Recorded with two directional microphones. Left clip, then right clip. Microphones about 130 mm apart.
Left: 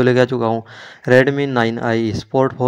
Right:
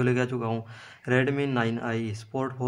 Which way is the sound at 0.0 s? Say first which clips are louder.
Left 13 dB; 55° left (ahead or behind).